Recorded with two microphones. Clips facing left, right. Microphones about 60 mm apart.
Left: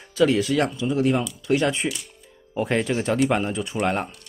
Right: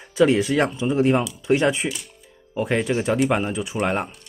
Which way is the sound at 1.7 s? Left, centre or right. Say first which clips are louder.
Right 2 dB; centre.